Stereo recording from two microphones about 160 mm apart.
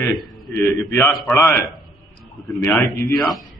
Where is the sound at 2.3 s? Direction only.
Centre (ahead or behind).